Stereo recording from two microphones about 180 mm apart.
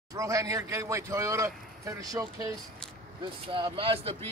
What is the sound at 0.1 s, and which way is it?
Speech, 20° right (ahead or behind).